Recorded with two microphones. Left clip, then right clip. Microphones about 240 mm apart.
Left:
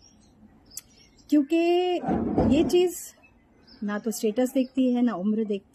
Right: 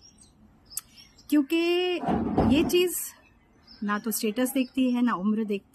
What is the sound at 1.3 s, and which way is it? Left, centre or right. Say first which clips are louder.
A woman's voice: left 2 dB; centre.